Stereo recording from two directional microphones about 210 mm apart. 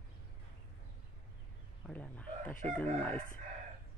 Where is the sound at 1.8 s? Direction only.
5° left (ahead or behind).